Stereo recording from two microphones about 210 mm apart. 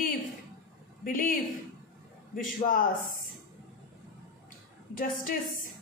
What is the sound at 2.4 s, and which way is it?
Speech, 40° left (ahead or behind).